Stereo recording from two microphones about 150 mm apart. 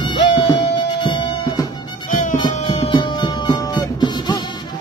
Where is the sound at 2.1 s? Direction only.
60° left (ahead or behind).